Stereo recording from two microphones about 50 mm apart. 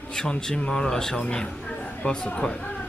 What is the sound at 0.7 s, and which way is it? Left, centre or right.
Speech, centre.